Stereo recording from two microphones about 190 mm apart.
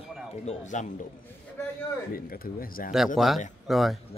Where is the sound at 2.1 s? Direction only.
50° left (ahead or behind).